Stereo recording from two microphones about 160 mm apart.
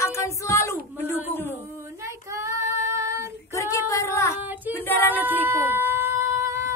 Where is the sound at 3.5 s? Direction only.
20° left (ahead or behind).